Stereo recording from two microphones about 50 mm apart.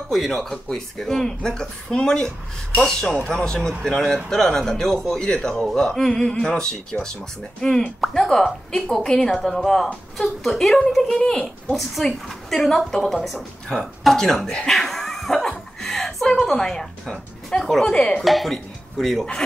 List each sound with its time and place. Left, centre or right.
0.1 s a woman's voice: centre
11.7 s a woman's voice: centre
15.5 s music: centre
17.6 s speech: centre
17.9 s chopping: left
18.2 s speech: centre